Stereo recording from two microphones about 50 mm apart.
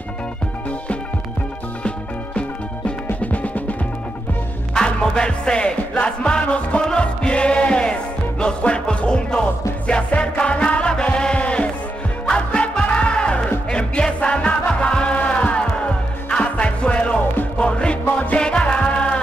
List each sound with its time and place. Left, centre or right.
1.8 s music: left
4.7 s music: centre